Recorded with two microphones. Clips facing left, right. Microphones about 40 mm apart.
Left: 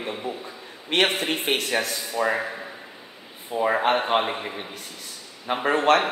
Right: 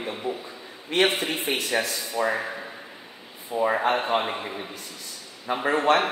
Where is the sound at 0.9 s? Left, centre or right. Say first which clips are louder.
Left 1 dB; left.